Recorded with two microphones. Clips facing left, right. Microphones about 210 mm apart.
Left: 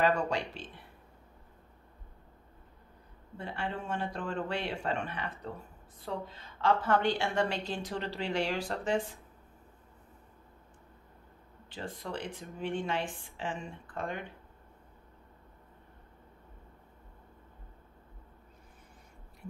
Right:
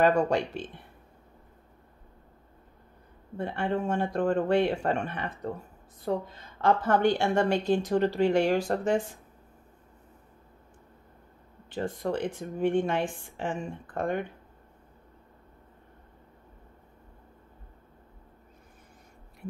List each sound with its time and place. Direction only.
0.0 s a woman's voice: 50° right (ahead or behind)
3.3 s a woman's voice: 50° right (ahead or behind)
11.7 s a woman's voice: 50° right (ahead or behind)